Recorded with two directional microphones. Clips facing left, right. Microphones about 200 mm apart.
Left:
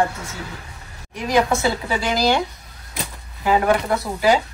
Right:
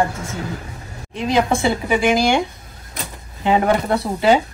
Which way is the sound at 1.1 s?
25° right (ahead or behind).